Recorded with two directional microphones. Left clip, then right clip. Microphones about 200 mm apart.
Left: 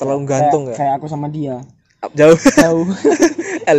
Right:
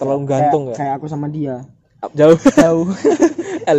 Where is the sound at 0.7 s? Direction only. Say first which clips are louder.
Left 4 dB; 15° left (ahead or behind).